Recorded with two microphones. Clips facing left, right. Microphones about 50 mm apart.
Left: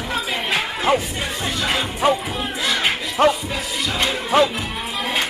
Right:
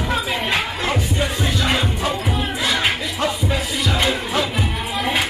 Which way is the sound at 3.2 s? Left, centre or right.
Left.